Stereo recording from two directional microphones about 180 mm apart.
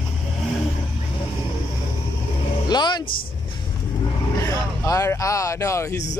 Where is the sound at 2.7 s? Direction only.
25° left (ahead or behind).